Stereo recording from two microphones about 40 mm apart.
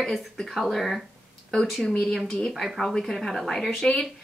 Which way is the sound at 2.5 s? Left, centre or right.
Centre.